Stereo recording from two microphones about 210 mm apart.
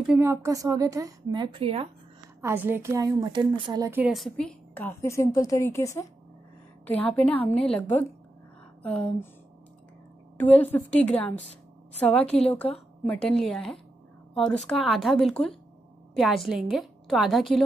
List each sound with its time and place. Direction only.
0.0 s a woman's voice: 10° right (ahead or behind)
2.4 s a woman's voice: 10° right (ahead or behind)
4.0 s a woman's voice: centre (ahead or behind)
8.8 s a woman's voice: 5° left (ahead or behind)
10.6 s a woman's voice: 5° left (ahead or behind)